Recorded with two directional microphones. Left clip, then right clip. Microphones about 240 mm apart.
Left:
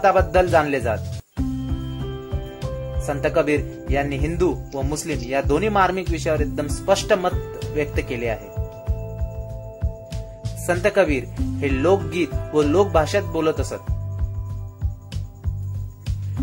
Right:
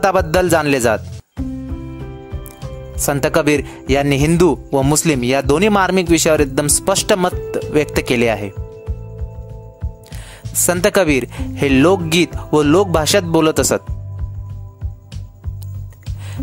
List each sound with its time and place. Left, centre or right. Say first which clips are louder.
0.0 s speech: right 2 dB; right
3.1 s speech: right 5 dB; right
10.6 s speech: right 4 dB; right